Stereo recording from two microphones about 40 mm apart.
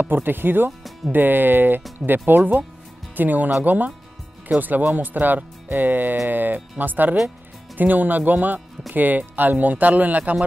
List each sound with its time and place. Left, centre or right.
0.0 s speech: right